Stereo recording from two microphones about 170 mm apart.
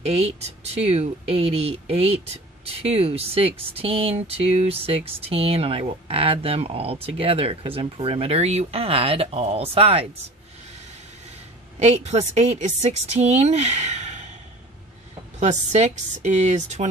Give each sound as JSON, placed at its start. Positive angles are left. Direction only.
{"t": 0.0, "sound": "speech", "side_deg": -40}
{"t": 11.8, "sound": "speech", "side_deg": -40}
{"t": 15.3, "sound": "a woman's voice", "side_deg": -40}